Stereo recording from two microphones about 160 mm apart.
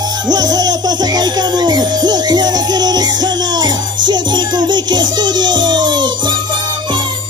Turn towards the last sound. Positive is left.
turn(degrees=-30)  # may be behind; listen again after turning